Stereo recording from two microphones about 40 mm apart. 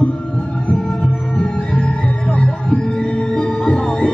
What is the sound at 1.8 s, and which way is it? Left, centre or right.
Music, left.